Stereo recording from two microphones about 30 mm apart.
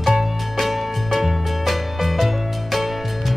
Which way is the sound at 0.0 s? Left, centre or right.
Centre.